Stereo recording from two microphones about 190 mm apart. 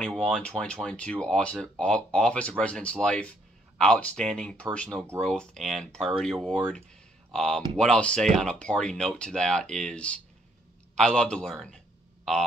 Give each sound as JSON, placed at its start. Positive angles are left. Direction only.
{"t": 0.0, "sound": "speech", "side_deg": 5}